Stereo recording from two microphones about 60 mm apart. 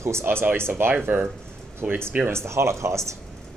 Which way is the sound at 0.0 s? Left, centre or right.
Right.